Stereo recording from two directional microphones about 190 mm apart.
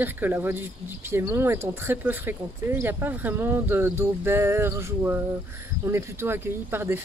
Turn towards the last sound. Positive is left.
turn(degrees=-10)  # may be behind; listen again after turning